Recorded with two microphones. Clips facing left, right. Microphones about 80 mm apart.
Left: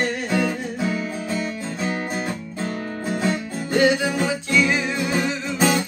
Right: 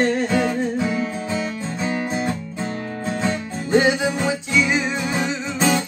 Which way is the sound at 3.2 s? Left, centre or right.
Right.